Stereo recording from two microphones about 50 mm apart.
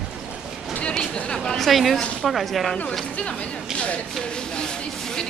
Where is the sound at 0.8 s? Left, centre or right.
Centre.